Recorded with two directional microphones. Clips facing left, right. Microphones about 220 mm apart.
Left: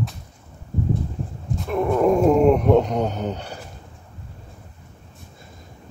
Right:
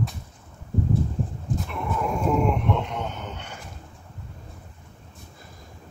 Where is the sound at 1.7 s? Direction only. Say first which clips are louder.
Left 12 dB; 40° left (ahead or behind).